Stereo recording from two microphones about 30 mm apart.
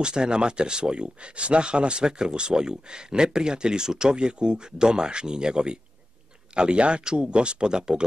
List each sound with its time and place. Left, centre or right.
0.0 s speech: right